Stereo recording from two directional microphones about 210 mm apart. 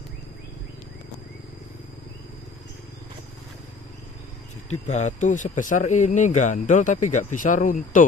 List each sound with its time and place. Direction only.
4.6 s speech: 35° left (ahead or behind)